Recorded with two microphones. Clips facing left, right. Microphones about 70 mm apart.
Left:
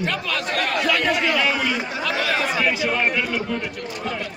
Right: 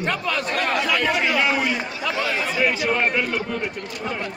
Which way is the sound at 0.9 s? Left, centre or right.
Centre.